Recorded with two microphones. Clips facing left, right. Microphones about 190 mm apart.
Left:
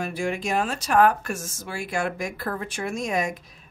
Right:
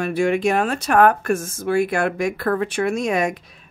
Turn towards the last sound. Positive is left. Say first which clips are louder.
# right 6 dB
turn(degrees=-70)  # may be behind; listen again after turning